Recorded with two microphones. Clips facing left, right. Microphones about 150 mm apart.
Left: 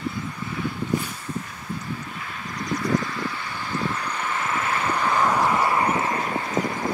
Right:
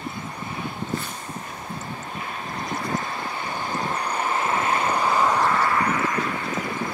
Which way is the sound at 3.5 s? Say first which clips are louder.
Right 1 dB; 40° right (ahead or behind).